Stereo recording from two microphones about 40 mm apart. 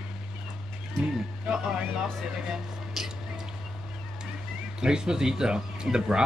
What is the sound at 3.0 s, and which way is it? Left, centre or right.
Whispering, centre.